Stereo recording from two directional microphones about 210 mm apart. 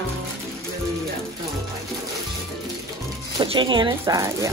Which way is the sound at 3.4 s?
25° right (ahead or behind).